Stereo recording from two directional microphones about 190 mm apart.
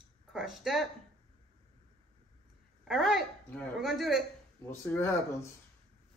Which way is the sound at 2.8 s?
Centre (ahead or behind).